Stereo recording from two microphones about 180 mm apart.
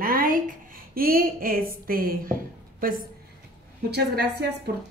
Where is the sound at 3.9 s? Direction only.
65° right (ahead or behind).